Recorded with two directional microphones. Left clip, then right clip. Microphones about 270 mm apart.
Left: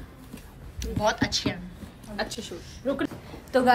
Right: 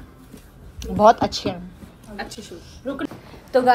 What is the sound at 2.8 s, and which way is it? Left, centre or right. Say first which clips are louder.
Speech: left 1 dB; left.